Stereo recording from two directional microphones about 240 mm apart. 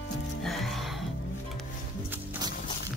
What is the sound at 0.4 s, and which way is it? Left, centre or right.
Music, centre.